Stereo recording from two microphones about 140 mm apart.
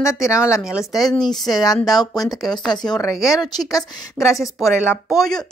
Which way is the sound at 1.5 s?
25° left (ahead or behind).